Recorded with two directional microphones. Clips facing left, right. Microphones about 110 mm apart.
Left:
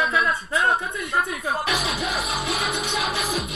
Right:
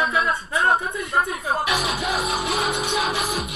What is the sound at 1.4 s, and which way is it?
Speech, 15° right (ahead or behind).